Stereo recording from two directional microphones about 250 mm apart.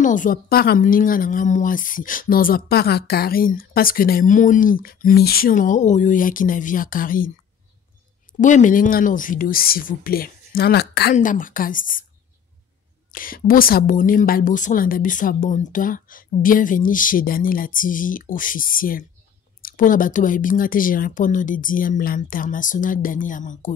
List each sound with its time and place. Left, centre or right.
0.0 s a woman's voice: left
8.3 s a woman's voice: left
13.1 s a woman's voice: left